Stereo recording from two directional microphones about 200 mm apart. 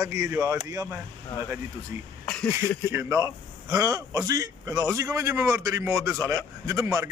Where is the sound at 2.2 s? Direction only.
5° left (ahead or behind).